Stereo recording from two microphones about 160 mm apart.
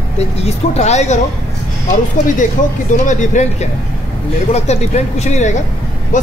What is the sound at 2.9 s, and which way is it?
Speech, 50° left (ahead or behind).